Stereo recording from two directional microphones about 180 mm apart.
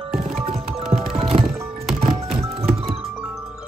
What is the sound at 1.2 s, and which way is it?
Music, 30° right (ahead or behind).